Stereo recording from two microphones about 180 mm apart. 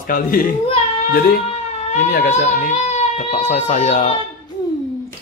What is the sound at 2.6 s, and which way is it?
Speech, 40° left (ahead or behind).